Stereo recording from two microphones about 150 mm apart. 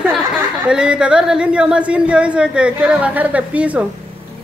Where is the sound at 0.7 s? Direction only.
5° right (ahead or behind).